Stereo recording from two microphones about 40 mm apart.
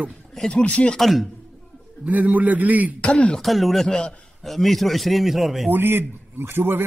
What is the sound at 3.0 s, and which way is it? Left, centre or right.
Speech, left.